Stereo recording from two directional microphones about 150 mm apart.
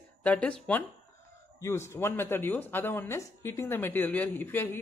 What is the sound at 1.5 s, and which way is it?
Speech, 20° left (ahead or behind).